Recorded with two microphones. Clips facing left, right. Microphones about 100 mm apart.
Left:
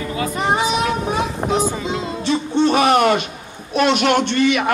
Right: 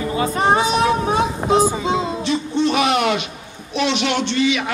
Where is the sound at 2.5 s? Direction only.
40° left (ahead or behind).